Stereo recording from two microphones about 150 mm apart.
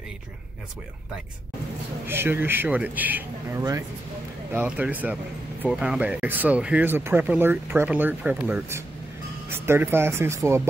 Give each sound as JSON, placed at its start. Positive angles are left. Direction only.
{"t": 2.0, "sound": "speech", "side_deg": -15}